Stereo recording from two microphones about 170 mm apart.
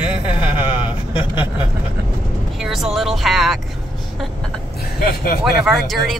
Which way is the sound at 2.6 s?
Centre (ahead or behind).